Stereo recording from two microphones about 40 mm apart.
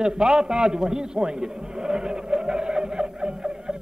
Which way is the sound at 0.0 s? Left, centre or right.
Centre.